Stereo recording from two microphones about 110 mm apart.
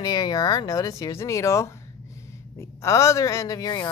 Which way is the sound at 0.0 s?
40° left (ahead or behind).